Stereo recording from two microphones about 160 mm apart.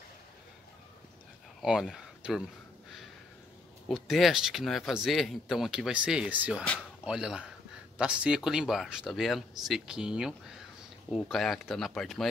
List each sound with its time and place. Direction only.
1.6 s speech: centre (ahead or behind)
3.9 s speech: centre (ahead or behind)
6.6 s speech: 5° left (ahead or behind)
7.1 s speech: 5° right (ahead or behind)